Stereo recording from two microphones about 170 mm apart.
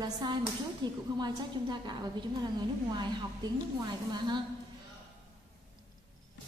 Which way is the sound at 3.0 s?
25° right (ahead or behind).